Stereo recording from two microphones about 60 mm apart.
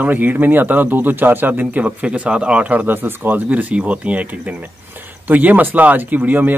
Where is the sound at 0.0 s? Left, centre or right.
Right.